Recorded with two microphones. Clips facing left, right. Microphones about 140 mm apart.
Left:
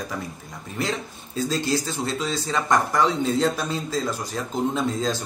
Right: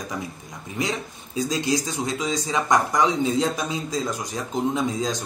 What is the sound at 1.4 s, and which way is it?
Speech, 15° right (ahead or behind).